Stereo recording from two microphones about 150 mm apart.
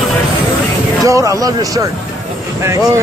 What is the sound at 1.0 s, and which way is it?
Speech, 20° right (ahead or behind).